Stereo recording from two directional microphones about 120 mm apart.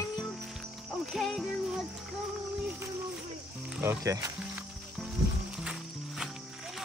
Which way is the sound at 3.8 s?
25° right (ahead or behind).